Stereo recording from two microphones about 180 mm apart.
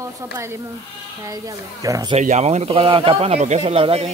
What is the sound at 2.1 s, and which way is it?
Speech, 40° right (ahead or behind).